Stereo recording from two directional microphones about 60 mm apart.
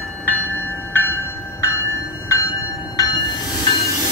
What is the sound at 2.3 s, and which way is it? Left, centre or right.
Train, left.